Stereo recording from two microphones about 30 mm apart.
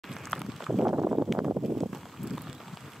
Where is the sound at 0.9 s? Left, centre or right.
Right.